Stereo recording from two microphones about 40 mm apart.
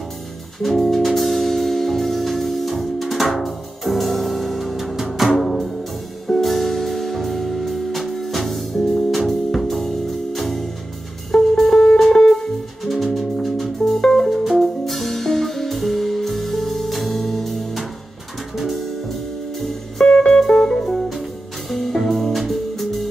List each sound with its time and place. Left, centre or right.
0.6 s music: centre
14.3 s music: centre
20.1 s music: left
21.6 s music: centre